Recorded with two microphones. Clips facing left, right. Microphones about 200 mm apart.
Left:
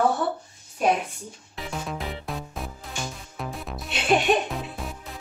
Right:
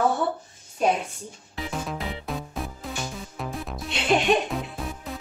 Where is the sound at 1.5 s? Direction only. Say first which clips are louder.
Right 1 dB; centre (ahead or behind).